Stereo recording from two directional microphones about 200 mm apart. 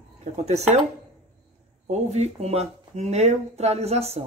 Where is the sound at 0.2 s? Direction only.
35° right (ahead or behind).